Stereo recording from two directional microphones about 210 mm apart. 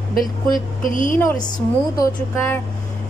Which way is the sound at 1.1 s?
15° left (ahead or behind).